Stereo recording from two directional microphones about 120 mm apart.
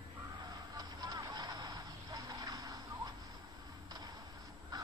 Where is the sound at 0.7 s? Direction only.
30° right (ahead or behind).